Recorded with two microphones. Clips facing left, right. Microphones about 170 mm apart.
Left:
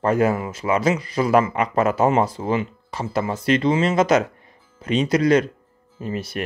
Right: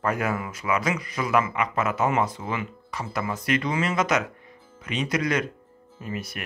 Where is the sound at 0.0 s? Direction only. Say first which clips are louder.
Left 7 dB; 30° left (ahead or behind).